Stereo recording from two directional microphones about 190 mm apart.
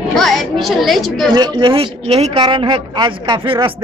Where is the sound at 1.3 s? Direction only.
25° right (ahead or behind).